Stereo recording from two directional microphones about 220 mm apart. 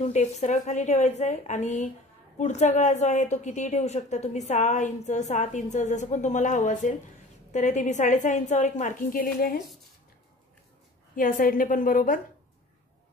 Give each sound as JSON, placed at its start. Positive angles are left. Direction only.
{"t": 0.1, "sound": "a woman's voice", "side_deg": 30}
{"t": 11.1, "sound": "a woman's voice", "side_deg": 40}